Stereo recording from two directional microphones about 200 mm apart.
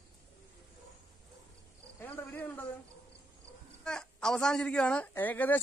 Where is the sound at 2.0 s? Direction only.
10° left (ahead or behind).